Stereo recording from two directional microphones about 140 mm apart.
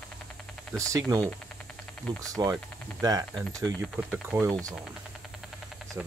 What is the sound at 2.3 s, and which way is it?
Speech, 25° right (ahead or behind).